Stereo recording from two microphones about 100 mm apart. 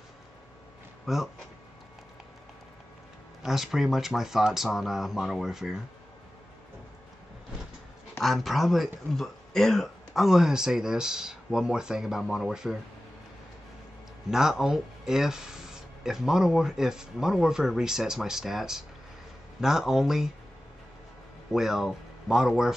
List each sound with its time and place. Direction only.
1.0 s speech: 5° right (ahead or behind)
3.4 s speech: 5° right (ahead or behind)
8.2 s speech: centre (ahead or behind)
14.3 s speech: 5° right (ahead or behind)
21.5 s speech: 5° right (ahead or behind)